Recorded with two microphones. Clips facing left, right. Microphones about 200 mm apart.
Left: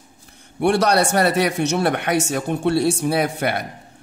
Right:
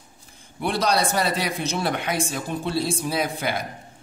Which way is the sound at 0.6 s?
65° left (ahead or behind).